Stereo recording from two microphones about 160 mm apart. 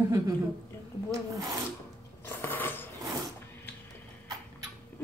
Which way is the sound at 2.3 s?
15° left (ahead or behind).